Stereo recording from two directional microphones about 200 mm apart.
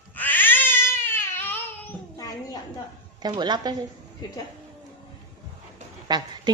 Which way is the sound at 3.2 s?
20° right (ahead or behind).